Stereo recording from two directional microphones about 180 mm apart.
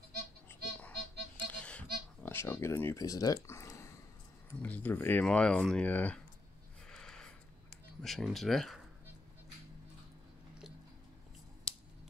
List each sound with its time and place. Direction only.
0.5 s music: 10° left (ahead or behind)
2.2 s speech: 15° left (ahead or behind)
6.9 s a sound: 5° left (ahead or behind)
8.0 s speech: centre (ahead or behind)